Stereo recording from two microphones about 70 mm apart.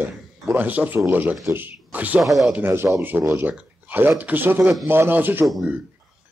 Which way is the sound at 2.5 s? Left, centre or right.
Right.